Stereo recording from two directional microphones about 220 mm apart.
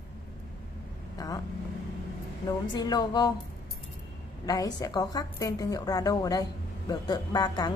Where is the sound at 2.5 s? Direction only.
20° left (ahead or behind).